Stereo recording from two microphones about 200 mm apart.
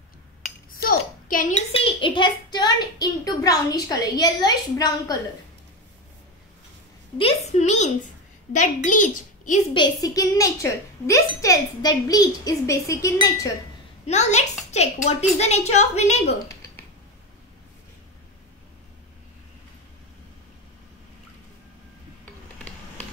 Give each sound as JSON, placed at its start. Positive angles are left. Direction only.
{"t": 0.7, "sound": "a sound", "side_deg": 45}
{"t": 1.7, "sound": "a child's voice", "side_deg": 25}
{"t": 7.2, "sound": "a woman's voice", "side_deg": 30}
{"t": 9.8, "sound": "a woman's voice", "side_deg": 20}
{"t": 14.0, "sound": "a woman's voice", "side_deg": 35}